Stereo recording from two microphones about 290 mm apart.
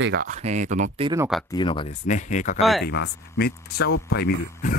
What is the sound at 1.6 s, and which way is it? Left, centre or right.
Speech, centre.